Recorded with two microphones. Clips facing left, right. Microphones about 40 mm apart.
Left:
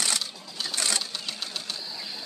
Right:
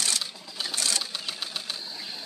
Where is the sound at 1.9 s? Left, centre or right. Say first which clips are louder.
Left 1 dB; right.